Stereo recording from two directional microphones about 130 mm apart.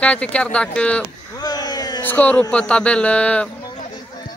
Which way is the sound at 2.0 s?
10° left (ahead or behind).